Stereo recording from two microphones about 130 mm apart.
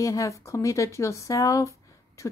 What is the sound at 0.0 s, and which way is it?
Speech, 25° left (ahead or behind).